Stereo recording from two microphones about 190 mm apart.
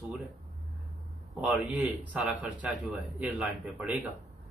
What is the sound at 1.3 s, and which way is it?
Speech, 5° right (ahead or behind).